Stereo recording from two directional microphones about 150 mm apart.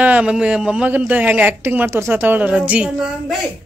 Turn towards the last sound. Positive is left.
turn(degrees=-5)  # may be behind; listen again after turning